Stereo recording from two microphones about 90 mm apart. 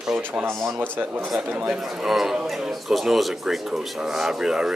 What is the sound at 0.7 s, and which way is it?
Speech, 20° right (ahead or behind).